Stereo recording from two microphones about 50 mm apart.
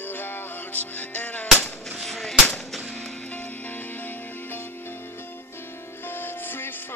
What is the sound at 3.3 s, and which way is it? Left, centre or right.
Music, left.